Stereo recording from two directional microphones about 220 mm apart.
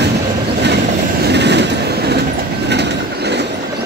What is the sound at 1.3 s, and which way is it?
Train, 50° right (ahead or behind).